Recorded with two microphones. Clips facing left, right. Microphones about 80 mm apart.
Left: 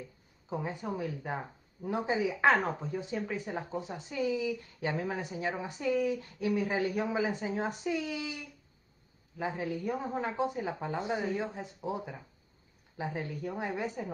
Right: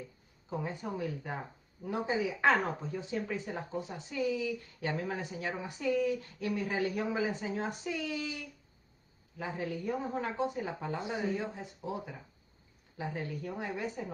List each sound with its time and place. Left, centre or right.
0.5 s speech: centre
9.6 s speech: centre